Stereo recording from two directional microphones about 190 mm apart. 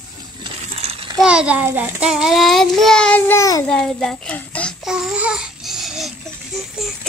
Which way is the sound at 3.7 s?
5° left (ahead or behind).